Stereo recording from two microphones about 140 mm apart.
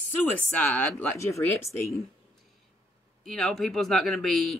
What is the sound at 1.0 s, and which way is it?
Speech, 15° left (ahead or behind).